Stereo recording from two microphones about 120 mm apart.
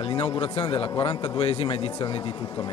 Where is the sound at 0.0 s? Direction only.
50° left (ahead or behind).